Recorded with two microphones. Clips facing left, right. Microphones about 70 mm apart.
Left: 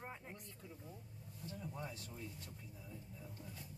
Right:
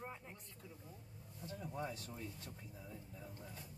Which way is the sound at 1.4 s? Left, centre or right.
Centre.